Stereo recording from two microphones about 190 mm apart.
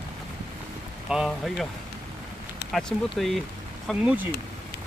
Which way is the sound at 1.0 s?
Centre (ahead or behind).